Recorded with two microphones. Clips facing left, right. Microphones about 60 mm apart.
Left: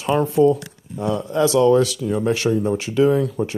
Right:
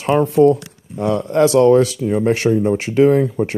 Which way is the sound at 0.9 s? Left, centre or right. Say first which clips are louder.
Right 5 dB; right.